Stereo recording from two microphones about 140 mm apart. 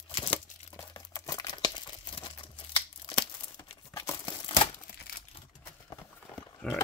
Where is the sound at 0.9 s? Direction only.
25° left (ahead or behind).